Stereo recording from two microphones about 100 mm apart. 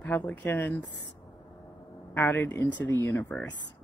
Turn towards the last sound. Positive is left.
turn(degrees=20)  # may be behind; listen again after turning